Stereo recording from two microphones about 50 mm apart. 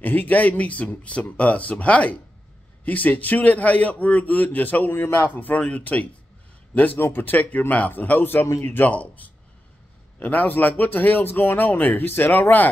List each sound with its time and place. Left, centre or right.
0.0 s a man's voice: left
4.9 s a man's voice: left
5.3 s a man's voice: left
7.0 s a man's voice: left